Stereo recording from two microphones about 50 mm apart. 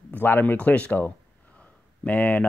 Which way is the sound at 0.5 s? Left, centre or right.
Left.